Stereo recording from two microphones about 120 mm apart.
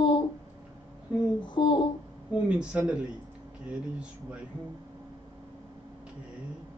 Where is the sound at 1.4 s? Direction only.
40° left (ahead or behind).